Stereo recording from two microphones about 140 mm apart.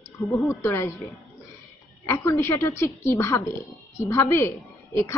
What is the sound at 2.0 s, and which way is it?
A woman's voice, 20° left (ahead or behind).